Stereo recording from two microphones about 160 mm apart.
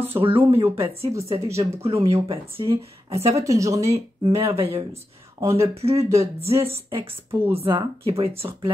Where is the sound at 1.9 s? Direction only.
40° right (ahead or behind).